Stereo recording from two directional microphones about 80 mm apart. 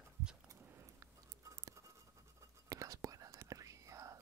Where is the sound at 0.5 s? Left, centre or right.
Right.